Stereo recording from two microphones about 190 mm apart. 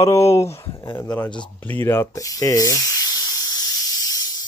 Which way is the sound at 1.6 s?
10° left (ahead or behind).